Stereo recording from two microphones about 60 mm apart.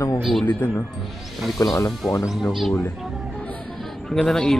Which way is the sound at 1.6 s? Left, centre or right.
Left.